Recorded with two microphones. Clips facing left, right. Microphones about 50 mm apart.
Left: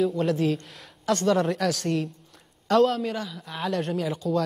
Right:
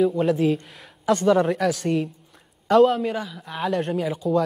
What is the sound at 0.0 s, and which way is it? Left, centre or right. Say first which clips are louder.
Speech: right 4 dB; centre.